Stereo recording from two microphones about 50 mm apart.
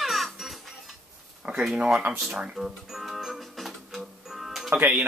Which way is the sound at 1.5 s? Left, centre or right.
Right.